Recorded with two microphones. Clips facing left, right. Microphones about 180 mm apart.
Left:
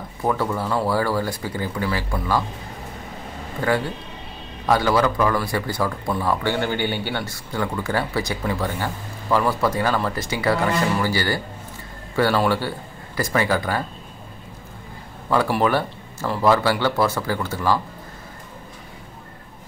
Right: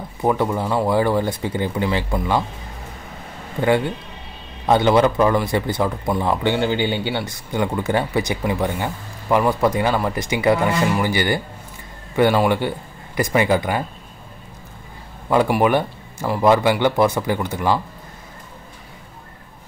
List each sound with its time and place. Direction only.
0.2 s a man's voice: 20° right (ahead or behind)
3.6 s a man's voice: 25° right (ahead or behind)
15.2 s speech: 15° right (ahead or behind)